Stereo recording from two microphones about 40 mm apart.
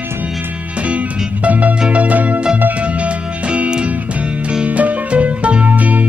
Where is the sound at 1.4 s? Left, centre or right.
Right.